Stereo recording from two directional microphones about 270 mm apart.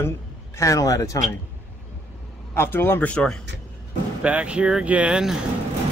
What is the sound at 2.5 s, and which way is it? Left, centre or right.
A man's voice, centre.